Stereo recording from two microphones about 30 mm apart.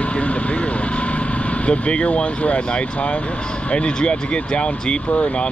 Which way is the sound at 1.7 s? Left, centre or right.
Left.